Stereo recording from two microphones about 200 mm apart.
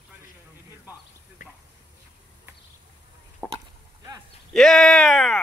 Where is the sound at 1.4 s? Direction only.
40° left (ahead or behind).